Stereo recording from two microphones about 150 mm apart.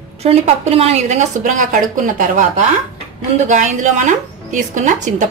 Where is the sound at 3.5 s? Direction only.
55° right (ahead or behind).